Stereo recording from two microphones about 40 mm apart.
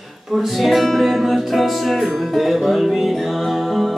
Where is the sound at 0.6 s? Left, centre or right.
Centre.